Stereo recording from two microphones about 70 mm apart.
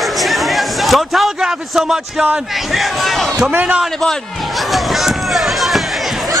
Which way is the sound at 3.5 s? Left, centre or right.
Right.